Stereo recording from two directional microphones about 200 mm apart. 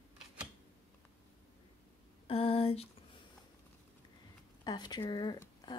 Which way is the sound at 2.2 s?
30° left (ahead or behind).